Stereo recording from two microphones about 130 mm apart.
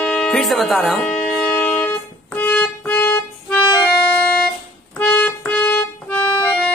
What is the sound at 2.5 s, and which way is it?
Music, 15° left (ahead or behind).